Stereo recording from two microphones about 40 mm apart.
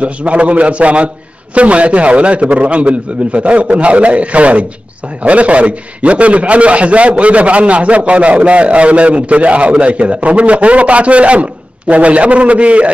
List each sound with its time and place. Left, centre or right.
0.0 s a man's voice: right